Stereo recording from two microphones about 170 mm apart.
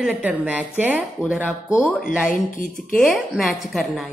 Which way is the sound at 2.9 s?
Centre (ahead or behind).